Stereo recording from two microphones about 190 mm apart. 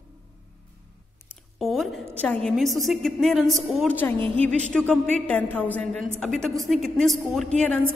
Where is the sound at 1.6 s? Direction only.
Centre (ahead or behind).